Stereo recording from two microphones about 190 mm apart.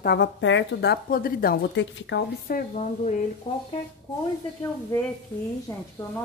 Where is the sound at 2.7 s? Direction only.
40° left (ahead or behind).